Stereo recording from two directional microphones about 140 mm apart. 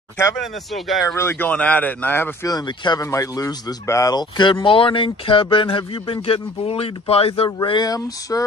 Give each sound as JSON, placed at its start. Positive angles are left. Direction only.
{"t": 0.4, "sound": "speech", "side_deg": 0}
{"t": 1.1, "sound": "speech", "side_deg": 15}
{"t": 2.4, "sound": "speech", "side_deg": 30}
{"t": 7.6, "sound": "speech", "side_deg": 30}